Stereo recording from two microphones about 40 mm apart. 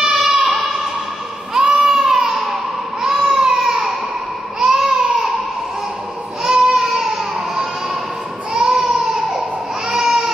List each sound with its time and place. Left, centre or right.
0.1 s a sound: centre
1.5 s baby cry: centre
6.4 s baby cry: centre